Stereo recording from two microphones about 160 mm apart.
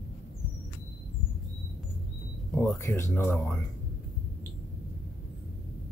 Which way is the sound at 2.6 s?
15° left (ahead or behind).